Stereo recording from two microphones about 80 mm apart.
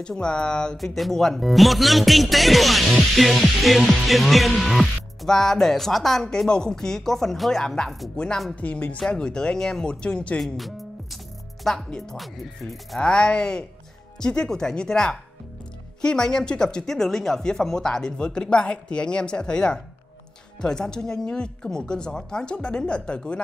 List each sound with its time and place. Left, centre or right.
0.0 s speech: centre
8.5 s speech: centre
10.4 s speech: centre